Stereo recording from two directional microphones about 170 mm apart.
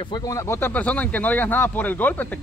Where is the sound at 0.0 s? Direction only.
25° left (ahead or behind).